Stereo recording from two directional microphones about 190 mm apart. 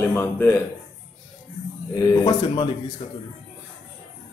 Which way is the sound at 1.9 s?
20° left (ahead or behind).